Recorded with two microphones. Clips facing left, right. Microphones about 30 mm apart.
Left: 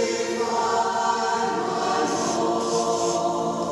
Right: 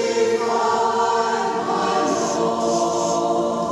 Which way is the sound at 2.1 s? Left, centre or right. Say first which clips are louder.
Right 3 dB; left.